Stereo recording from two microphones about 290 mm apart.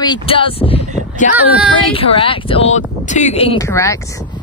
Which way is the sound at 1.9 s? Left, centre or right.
Centre.